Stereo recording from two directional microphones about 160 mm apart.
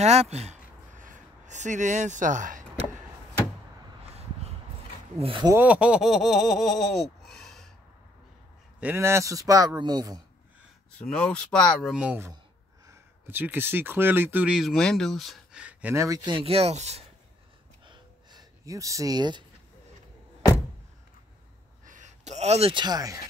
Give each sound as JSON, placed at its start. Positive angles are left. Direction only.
{"t": 0.0, "sound": "a sound", "side_deg": -45}
{"t": 5.2, "sound": "speech", "side_deg": -30}
{"t": 5.5, "sound": "speech", "side_deg": -10}
{"t": 8.7, "sound": "a man's voice", "side_deg": -10}
{"t": 11.0, "sound": "speech", "side_deg": 5}
{"t": 16.3, "sound": "speech", "side_deg": -35}
{"t": 17.8, "sound": "a sound", "side_deg": -25}
{"t": 21.8, "sound": "speech", "side_deg": -50}